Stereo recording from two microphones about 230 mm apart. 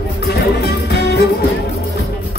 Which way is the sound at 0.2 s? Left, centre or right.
Left.